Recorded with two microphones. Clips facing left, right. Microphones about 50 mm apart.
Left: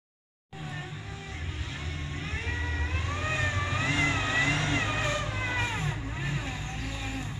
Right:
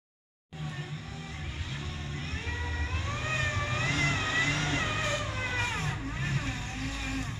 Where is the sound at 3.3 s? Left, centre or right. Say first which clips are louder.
Left 1 dB; left.